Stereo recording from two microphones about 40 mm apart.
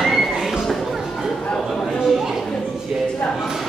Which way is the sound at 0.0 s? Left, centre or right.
Centre.